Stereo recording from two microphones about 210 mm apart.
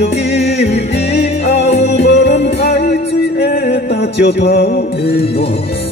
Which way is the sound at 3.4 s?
45° left (ahead or behind).